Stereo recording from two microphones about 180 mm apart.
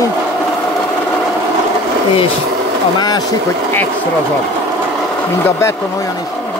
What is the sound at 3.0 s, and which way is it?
Speech, 20° left (ahead or behind).